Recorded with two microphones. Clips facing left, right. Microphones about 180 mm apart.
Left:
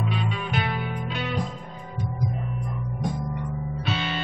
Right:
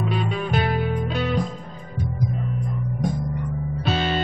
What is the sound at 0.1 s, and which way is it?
Music, 40° right (ahead or behind).